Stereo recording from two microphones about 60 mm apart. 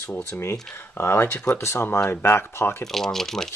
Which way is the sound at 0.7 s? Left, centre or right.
Left.